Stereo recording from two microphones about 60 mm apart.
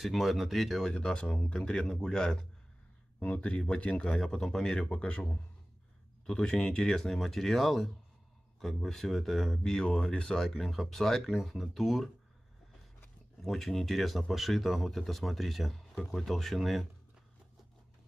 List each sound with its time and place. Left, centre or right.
0.0 s speech: centre
0.9 s speech: centre
3.3 s speech: left
4.8 s speech: left
6.2 s speech: centre
13.4 s speech: centre